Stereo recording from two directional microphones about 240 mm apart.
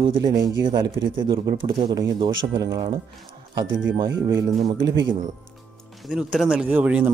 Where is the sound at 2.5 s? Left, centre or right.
Centre.